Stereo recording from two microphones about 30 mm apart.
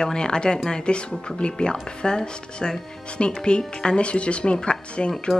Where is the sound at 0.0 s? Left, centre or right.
Left.